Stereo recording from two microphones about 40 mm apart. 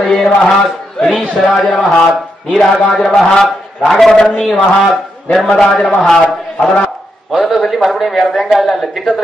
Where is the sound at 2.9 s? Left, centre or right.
Centre.